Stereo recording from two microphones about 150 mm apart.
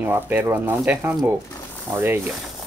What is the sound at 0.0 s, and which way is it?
Speech, 15° right (ahead or behind).